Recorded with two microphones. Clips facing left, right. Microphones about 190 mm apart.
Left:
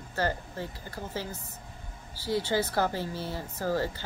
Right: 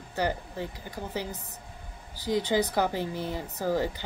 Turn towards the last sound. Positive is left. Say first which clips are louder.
# right 2 dB
turn(degrees=-15)  # may be behind; listen again after turning